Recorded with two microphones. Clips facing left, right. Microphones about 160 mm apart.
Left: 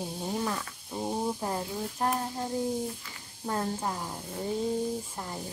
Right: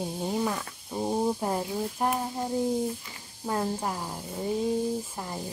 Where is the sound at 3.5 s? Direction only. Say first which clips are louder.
Right 2 dB; 10° right (ahead or behind).